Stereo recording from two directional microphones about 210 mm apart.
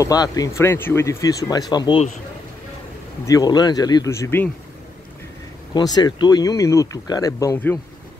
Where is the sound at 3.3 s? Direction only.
15° left (ahead or behind).